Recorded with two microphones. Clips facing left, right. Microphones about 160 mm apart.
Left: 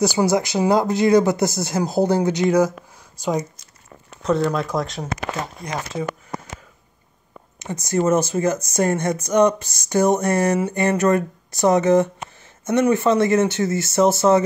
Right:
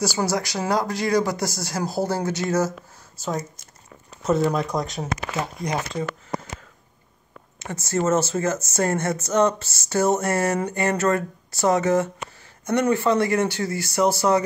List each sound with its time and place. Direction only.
0.0 s speech: 20° left (ahead or behind)
4.2 s speech: 5° right (ahead or behind)
7.5 s speech: 15° left (ahead or behind)